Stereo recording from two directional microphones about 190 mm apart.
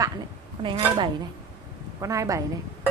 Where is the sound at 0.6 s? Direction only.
25° right (ahead or behind).